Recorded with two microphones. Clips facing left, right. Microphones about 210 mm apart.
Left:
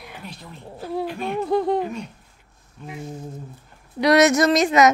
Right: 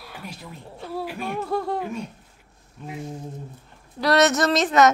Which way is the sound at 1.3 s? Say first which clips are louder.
Left 6 dB; 20° left (ahead or behind).